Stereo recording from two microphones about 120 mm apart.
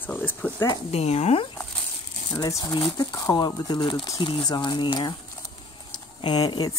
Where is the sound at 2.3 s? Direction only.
30° left (ahead or behind).